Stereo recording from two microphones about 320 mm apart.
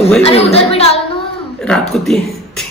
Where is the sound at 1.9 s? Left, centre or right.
Centre.